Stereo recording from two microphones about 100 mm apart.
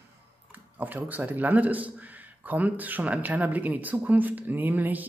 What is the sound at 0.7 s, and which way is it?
Speech, 15° right (ahead or behind).